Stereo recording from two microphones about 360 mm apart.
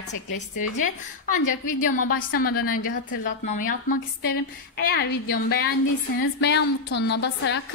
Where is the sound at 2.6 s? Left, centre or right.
Left.